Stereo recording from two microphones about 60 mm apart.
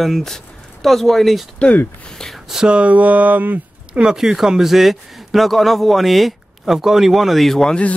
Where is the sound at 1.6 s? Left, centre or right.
Left.